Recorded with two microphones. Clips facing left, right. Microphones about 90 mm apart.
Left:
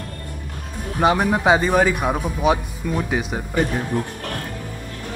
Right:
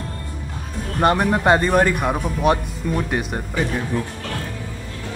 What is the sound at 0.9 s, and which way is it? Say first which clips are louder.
A man's voice: even; centre (ahead or behind).